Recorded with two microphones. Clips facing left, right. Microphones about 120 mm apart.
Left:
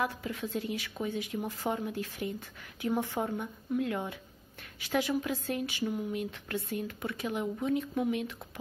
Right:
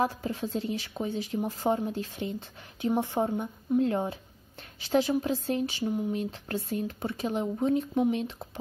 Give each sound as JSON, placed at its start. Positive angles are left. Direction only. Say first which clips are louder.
{"t": 0.0, "sound": "speech", "louder": "right 5 dB", "side_deg": -30}